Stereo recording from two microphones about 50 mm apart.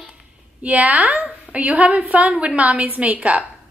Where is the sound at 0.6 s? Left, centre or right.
Right.